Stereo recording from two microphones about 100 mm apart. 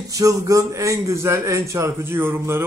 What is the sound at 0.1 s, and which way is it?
A man's voice, 35° right (ahead or behind).